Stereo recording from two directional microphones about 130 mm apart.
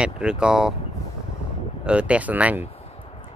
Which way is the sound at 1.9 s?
10° right (ahead or behind).